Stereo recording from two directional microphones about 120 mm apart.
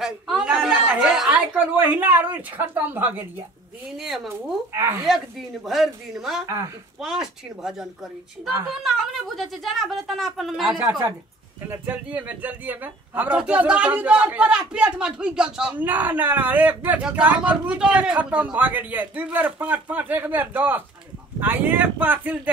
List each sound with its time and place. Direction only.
0.0 s a woman's voice: 5° right (ahead or behind)
3.9 s a woman's voice: centre (ahead or behind)
4.7 s speech: 20° right (ahead or behind)
5.7 s a woman's voice: centre (ahead or behind)
6.4 s speech: 25° right (ahead or behind)
7.0 s a woman's voice: 5° right (ahead or behind)
11.6 s speech: 15° right (ahead or behind)